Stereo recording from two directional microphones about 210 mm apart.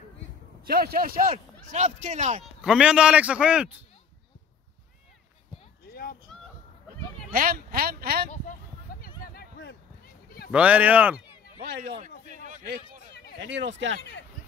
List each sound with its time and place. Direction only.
0.7 s speech: 45° right (ahead or behind)
1.3 s speech: 30° right (ahead or behind)
2.6 s a man's voice: 5° right (ahead or behind)
5.9 s a sound: 45° left (ahead or behind)
7.3 s speech: 45° right (ahead or behind)
9.2 s a sound: 45° left (ahead or behind)
10.5 s speech: 5° right (ahead or behind)
12.3 s a sound: 35° right (ahead or behind)
13.4 s speech: 60° right (ahead or behind)